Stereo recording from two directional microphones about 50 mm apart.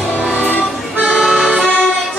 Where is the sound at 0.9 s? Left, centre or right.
Right.